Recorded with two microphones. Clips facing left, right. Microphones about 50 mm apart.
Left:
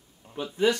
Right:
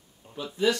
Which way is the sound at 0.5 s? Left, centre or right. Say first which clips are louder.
Left 1 dB; left.